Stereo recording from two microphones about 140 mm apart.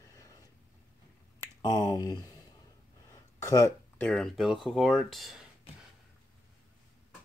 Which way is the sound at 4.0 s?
5° left (ahead or behind).